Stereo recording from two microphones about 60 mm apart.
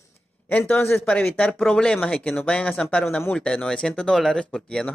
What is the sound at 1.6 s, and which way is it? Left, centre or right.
Speech, centre.